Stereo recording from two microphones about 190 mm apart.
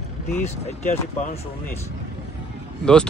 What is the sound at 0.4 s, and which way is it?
Speech, 40° left (ahead or behind).